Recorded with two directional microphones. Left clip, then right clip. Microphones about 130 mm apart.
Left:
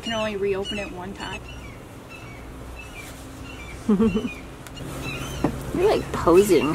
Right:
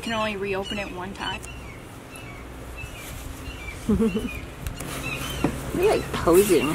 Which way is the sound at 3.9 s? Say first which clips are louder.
Left 2 dB; 25° left (ahead or behind).